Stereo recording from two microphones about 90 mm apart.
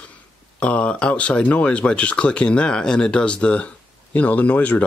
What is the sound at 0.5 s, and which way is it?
Speech, 15° left (ahead or behind).